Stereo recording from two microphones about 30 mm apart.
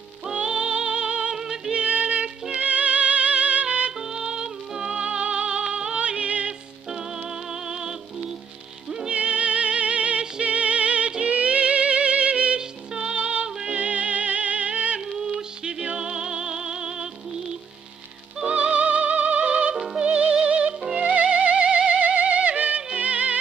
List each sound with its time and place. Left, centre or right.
0.3 s music: right
1.3 s music: centre
1.7 s music: right
4.1 s music: right
4.9 s music: right
5.7 s music: right
6.2 s music: right
7.6 s music: right
9.1 s music: right
12.5 s music: right
13.1 s music: right
15.1 s music: right
18.5 s music: right